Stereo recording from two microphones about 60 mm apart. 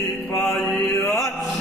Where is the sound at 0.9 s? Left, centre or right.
Left.